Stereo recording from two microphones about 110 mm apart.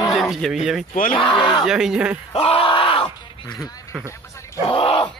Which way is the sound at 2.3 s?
60° left (ahead or behind).